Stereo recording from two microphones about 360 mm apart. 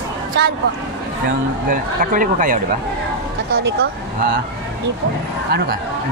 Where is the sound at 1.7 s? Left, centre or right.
Right.